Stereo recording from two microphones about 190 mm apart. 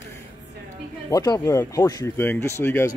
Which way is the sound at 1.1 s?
20° left (ahead or behind).